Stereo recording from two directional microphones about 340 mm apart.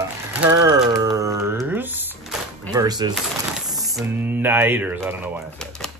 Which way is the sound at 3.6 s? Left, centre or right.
Centre.